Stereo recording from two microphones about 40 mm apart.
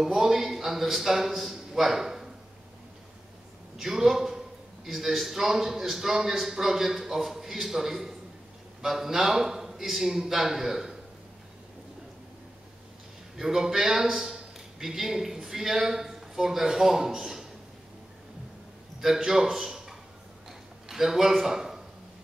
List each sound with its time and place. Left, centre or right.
0.0 s a man's voice: centre
3.7 s a man's voice: centre
13.4 s a man's voice: centre
17.2 s a sound: centre
18.9 s a man's voice: centre
20.4 s a sound: centre